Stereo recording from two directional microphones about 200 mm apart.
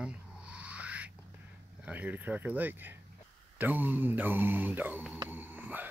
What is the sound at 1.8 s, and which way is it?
Speech, 5° right (ahead or behind).